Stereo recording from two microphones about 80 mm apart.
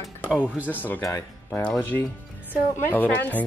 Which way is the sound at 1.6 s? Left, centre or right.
Left.